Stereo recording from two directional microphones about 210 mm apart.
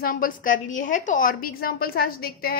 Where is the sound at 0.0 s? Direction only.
40° left (ahead or behind).